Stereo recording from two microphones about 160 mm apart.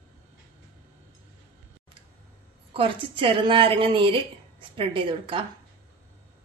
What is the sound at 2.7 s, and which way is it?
A woman's voice, 35° right (ahead or behind).